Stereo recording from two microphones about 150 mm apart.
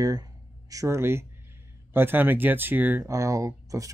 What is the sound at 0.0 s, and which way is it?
Speech, 25° right (ahead or behind).